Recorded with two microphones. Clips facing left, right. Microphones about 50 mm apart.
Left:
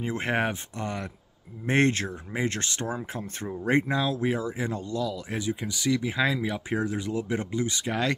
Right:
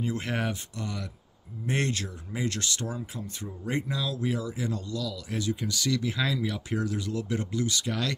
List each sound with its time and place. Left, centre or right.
0.0 s speech: left